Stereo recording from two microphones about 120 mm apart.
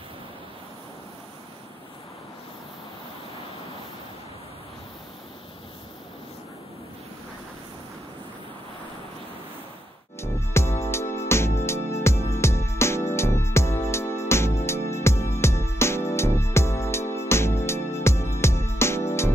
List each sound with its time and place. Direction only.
10.2 s music: 20° left (ahead or behind)